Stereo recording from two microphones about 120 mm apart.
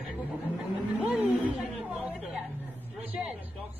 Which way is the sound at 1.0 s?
10° right (ahead or behind).